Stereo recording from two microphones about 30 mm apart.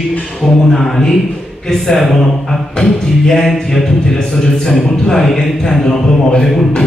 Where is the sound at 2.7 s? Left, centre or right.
Left.